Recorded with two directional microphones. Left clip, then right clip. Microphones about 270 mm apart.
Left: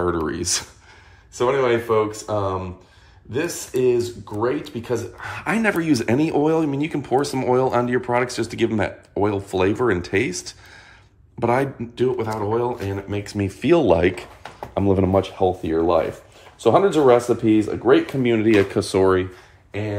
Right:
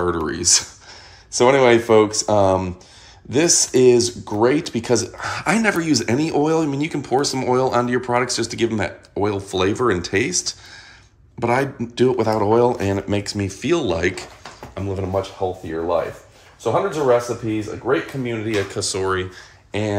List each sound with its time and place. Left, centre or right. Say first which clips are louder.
0.0 s speech: right 2 dB; centre
1.3 s speech: right 5 dB; centre
11.9 s speech: right 6 dB; centre
15.0 s speech: left 4 dB; left